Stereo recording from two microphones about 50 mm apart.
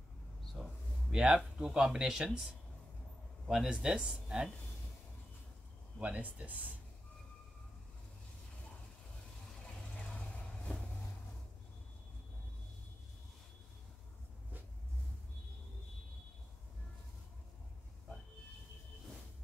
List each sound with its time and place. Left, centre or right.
0.6 s a sound: centre
1.1 s speech: centre
5.9 s speech: right
10.1 s train: left